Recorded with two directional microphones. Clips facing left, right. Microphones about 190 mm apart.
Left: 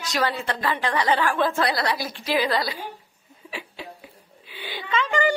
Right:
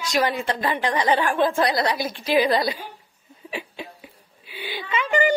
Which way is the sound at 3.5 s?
15° right (ahead or behind).